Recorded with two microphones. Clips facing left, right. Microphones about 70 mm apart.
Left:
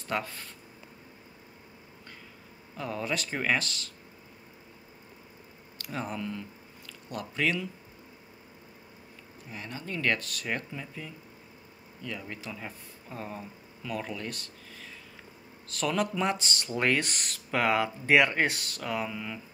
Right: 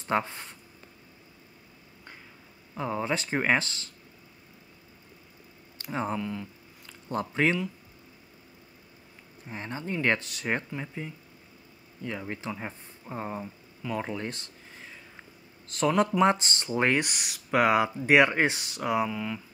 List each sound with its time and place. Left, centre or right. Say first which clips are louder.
0.0 s speech: right 5 dB; right
2.7 s speech: right 3 dB; right
5.8 s speech: right 5 dB; right
6.1 s speech: right 3 dB; centre
6.9 s speech: right 6 dB; right
9.5 s speech: right 4 dB; right
12.0 s speech: right 4 dB; right
16.0 s speech: right 7 dB; right
17.1 s speech: right 4 dB; centre
19.0 s speech: right 4 dB; centre